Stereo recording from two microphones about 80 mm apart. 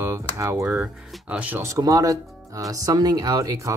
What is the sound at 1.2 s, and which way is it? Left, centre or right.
Speech, centre.